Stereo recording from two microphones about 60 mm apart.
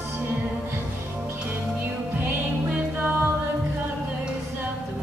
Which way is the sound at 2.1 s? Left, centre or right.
Right.